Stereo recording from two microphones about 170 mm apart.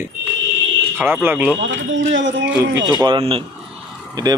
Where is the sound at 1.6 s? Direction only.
90° right.